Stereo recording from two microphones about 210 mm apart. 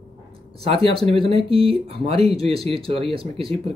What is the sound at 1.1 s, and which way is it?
Speech, 25° right (ahead or behind).